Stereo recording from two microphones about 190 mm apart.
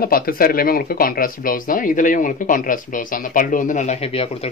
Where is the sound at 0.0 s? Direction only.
50° left (ahead or behind).